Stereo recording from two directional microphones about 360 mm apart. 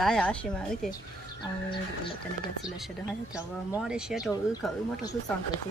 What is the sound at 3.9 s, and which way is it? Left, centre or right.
Speech, centre.